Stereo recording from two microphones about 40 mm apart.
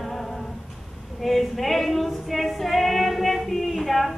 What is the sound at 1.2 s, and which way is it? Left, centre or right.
Female singing, centre.